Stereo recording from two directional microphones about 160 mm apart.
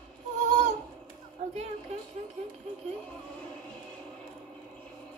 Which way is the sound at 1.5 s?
40° right (ahead or behind).